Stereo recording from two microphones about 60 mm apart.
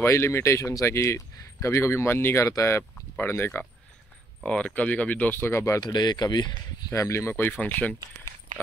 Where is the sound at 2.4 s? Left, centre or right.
Left.